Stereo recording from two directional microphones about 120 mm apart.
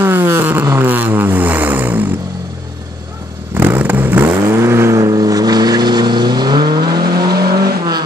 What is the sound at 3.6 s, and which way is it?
Vehicle, 15° right (ahead or behind).